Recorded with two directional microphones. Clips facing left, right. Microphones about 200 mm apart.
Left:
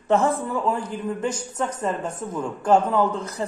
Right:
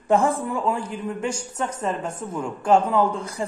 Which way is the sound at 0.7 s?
10° right (ahead or behind).